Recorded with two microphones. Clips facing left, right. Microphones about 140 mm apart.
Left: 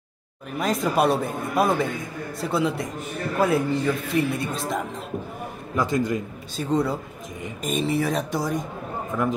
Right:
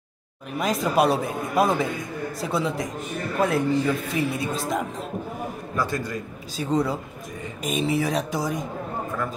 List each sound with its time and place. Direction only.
0.6 s speech: centre (ahead or behind)
5.8 s a man's voice: 20° left (ahead or behind)
6.5 s speech: centre (ahead or behind)